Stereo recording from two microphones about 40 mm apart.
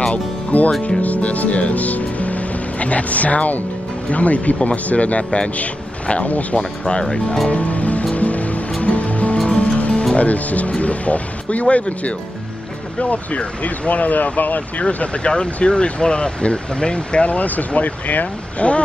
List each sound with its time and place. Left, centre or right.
0.1 s music: left
0.8 s speech: left
6.9 s speech: left
7.4 s speech: left
8.1 s music: left
10.1 s speech: left
15.3 s speech: left